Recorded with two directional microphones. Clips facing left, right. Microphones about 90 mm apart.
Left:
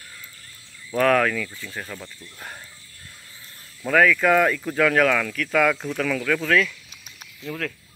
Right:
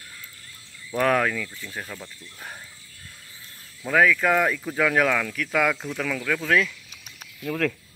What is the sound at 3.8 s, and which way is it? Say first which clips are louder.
Speech: left 2 dB; 10° right (ahead or behind).